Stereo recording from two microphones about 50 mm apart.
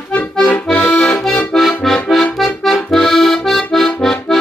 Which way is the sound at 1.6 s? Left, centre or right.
Centre.